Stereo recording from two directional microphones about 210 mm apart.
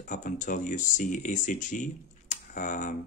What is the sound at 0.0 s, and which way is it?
Speech, 35° left (ahead or behind).